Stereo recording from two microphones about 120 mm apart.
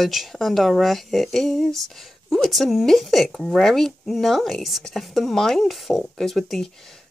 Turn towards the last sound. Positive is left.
turn(degrees=5)  # may be behind; listen again after turning